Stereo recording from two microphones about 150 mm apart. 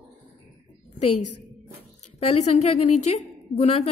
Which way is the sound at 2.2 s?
45° left (ahead or behind).